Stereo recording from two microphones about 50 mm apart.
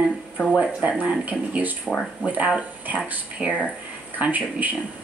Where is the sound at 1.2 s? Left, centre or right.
Right.